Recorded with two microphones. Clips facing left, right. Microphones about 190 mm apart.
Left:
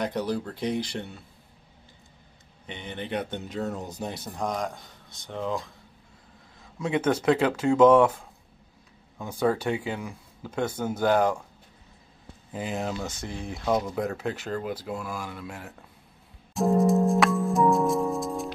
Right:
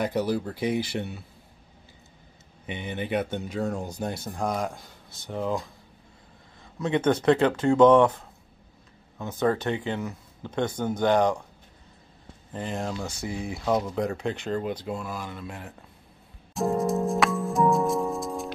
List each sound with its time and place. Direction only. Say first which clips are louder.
0.0 s speech: right 2 dB; 5° right (ahead or behind)
2.6 s speech: right 4 dB; 10° right (ahead or behind)
6.8 s speech: right 1 dB; 5° left (ahead or behind)
12.5 s speech: left 1 dB; 5° left (ahead or behind)
16.5 s music: left 3 dB; centre (ahead or behind)